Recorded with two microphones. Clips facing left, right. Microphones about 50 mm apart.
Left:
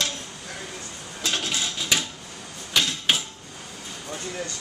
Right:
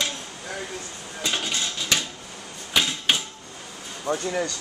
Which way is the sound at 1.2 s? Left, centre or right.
Centre.